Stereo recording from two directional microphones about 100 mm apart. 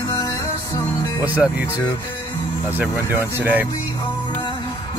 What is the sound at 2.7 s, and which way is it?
Speech, 20° right (ahead or behind).